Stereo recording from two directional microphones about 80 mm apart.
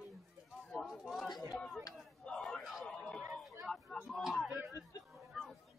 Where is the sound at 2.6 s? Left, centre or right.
Centre.